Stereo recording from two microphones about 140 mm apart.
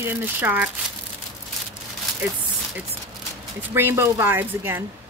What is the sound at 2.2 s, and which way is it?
Speech, 10° right (ahead or behind).